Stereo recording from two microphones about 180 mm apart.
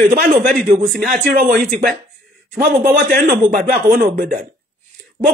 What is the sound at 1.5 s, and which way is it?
Speech, 55° right (ahead or behind).